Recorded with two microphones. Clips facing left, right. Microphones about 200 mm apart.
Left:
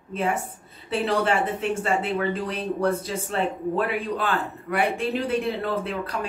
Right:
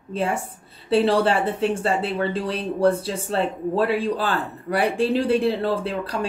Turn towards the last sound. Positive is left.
turn(degrees=-30)  # may be behind; listen again after turning